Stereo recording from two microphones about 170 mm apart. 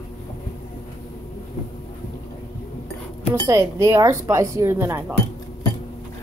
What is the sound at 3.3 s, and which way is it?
Speech, 20° right (ahead or behind).